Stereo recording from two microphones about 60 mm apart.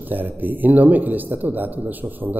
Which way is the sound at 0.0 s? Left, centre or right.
Right.